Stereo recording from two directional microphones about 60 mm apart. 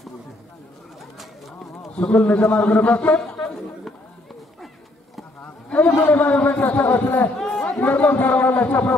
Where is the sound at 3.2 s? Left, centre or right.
Centre.